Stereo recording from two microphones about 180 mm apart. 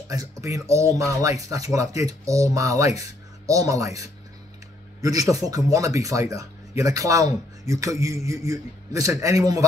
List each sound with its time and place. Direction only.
0.1 s speech: 20° right (ahead or behind)
5.0 s speech: 20° right (ahead or behind)